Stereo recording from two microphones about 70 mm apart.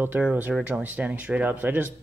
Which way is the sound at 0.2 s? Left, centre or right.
Right.